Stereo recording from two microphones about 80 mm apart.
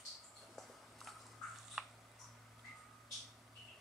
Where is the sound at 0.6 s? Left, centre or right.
Centre.